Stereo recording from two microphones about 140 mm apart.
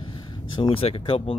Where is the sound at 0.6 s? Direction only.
40° left (ahead or behind).